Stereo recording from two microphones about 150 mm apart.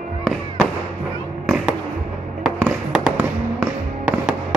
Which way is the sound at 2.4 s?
5° right (ahead or behind).